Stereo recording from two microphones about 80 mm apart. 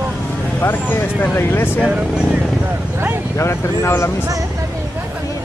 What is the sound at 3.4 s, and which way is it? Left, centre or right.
Speech, left.